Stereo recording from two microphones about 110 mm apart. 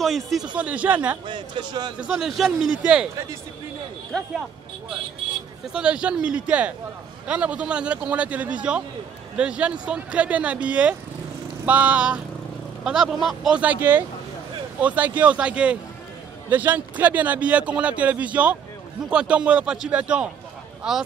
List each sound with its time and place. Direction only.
0.0 s a man's voice: centre (ahead or behind)
0.6 s a man's voice: 10° right (ahead or behind)
1.2 s a man's voice: 45° right (ahead or behind)
2.0 s a man's voice: 5° right (ahead or behind)
5.7 s a man's voice: 10° right (ahead or behind)